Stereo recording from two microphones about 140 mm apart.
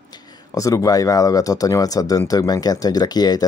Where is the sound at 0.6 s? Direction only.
25° left (ahead or behind).